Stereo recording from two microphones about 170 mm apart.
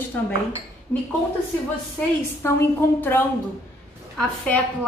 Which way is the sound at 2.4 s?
15° left (ahead or behind).